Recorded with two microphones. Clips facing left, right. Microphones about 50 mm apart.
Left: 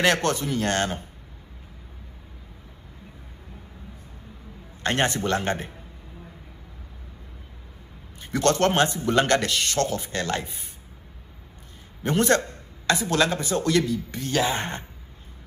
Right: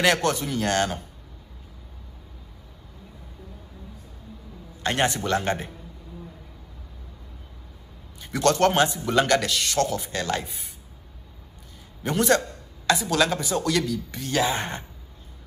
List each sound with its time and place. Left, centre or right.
0.4 s speech: left
4.8 s speech: left
8.2 s speech: left
12.0 s speech: left